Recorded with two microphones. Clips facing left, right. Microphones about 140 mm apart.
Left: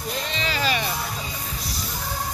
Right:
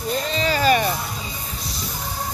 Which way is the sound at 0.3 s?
40° right (ahead or behind).